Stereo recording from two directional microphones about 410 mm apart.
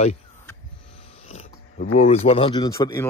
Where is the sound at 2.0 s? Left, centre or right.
Centre.